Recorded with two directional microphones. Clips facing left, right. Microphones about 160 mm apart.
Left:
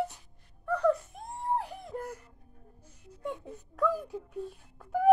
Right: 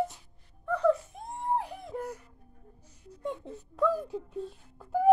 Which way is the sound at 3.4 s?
10° left (ahead or behind).